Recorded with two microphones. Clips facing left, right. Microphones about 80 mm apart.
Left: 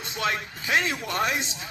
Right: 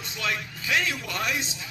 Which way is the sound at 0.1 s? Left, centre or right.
Left.